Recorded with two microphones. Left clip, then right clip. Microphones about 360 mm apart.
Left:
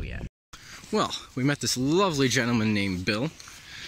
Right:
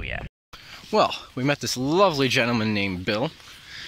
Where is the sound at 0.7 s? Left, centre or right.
Centre.